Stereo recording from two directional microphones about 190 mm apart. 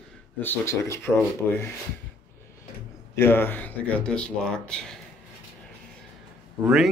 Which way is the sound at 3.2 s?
10° left (ahead or behind).